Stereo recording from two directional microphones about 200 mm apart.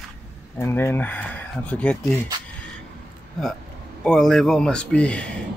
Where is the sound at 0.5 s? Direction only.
10° left (ahead or behind).